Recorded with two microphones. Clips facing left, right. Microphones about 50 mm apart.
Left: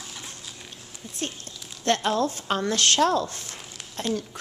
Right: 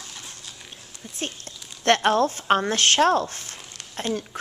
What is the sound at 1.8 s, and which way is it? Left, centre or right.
Speech, right.